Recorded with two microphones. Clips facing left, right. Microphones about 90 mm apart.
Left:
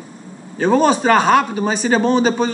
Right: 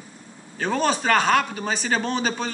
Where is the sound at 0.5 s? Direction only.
15° left (ahead or behind).